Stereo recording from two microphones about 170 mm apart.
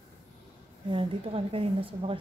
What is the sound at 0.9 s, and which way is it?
A woman's voice, 30° right (ahead or behind).